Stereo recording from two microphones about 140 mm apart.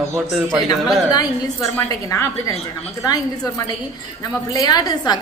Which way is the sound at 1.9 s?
25° left (ahead or behind).